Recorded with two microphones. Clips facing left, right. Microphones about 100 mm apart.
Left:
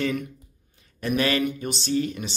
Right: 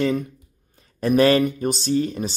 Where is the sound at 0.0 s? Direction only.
30° right (ahead or behind).